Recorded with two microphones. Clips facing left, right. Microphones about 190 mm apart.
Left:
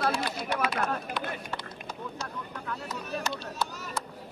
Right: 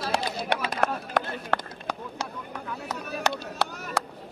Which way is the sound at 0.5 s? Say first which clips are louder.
Right 1 dB; 75° right (ahead or behind).